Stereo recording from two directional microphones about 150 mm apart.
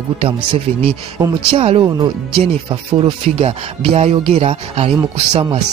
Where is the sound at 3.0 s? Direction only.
40° right (ahead or behind).